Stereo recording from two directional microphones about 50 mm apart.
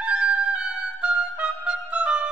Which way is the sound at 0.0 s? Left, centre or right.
Right.